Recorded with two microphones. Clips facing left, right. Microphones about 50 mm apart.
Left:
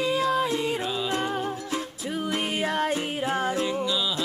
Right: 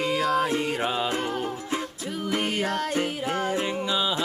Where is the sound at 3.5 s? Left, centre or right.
Right.